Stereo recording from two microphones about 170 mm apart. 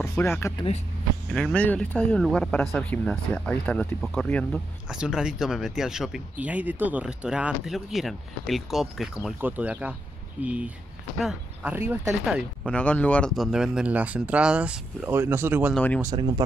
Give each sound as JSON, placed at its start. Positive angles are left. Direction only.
{"t": 0.0, "sound": "speech", "side_deg": 10}
{"t": 11.7, "sound": "speech", "side_deg": -15}
{"t": 12.3, "sound": "speech", "side_deg": 5}
{"t": 15.7, "sound": "speech", "side_deg": 10}
{"t": 16.0, "sound": "speech", "side_deg": -20}